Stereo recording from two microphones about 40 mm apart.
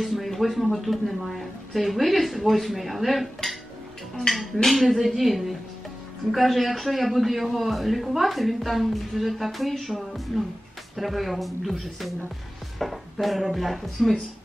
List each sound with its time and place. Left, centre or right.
0.0 s a man's voice: centre
4.3 s speech: centre
4.6 s a man's voice: centre